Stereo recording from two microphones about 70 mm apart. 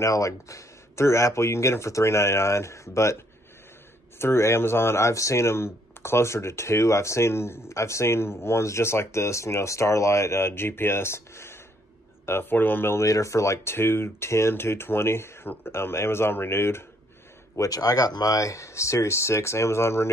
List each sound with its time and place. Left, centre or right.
0.0 s speech: left
4.2 s speech: left
13.0 s speech: left
17.6 s speech: left